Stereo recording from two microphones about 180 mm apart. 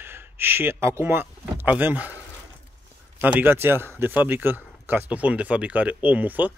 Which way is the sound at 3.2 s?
10° right (ahead or behind).